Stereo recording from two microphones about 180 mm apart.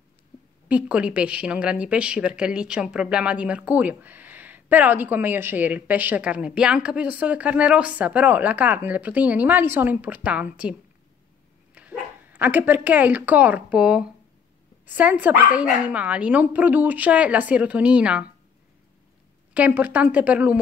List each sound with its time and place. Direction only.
0.7 s speech: 5° right (ahead or behind)
19.5 s speech: 10° right (ahead or behind)